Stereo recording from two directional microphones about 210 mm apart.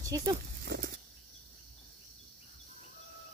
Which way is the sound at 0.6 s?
45° right (ahead or behind).